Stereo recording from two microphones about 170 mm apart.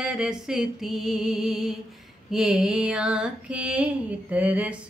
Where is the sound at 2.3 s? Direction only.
Centre (ahead or behind).